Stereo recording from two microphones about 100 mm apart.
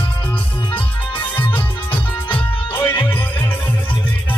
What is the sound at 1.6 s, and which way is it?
Music, 15° left (ahead or behind).